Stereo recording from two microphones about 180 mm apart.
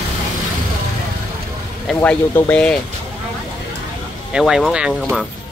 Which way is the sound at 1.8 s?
5° left (ahead or behind).